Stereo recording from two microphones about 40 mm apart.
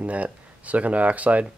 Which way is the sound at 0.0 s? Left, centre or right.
Right.